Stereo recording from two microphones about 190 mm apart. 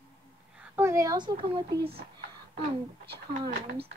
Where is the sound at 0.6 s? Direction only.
15° right (ahead or behind).